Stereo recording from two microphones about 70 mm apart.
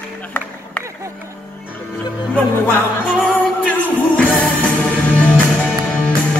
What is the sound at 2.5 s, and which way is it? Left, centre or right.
Music, left.